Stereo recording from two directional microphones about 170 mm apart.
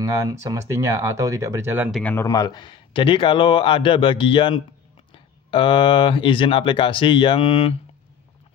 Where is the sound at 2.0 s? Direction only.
15° left (ahead or behind).